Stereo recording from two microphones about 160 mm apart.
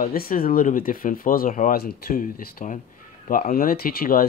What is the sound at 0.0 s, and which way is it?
Speech, 65° left (ahead or behind).